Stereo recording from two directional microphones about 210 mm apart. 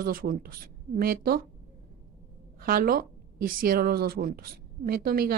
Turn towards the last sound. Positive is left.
turn(degrees=-45)  # may be behind; listen again after turning